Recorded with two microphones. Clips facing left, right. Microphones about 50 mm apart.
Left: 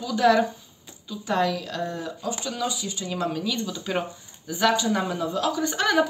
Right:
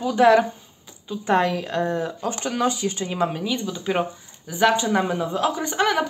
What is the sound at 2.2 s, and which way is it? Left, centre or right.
Speech, right.